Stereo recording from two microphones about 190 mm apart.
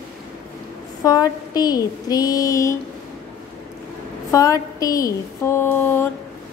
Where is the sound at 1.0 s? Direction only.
20° left (ahead or behind).